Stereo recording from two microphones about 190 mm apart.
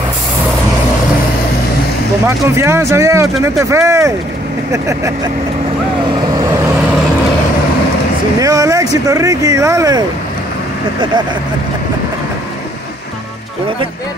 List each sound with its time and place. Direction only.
2.2 s speech: 15° right (ahead or behind)
8.4 s speech: 20° right (ahead or behind)